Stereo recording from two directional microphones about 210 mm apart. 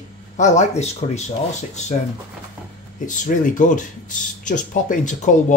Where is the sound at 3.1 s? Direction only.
35° left (ahead or behind).